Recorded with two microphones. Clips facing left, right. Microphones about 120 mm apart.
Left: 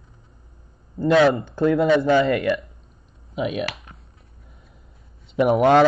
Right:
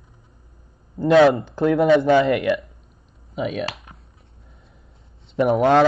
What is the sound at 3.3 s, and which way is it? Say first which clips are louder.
Speech: even; 5° left (ahead or behind).